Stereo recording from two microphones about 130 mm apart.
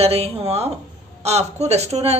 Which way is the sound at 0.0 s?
50° right (ahead or behind).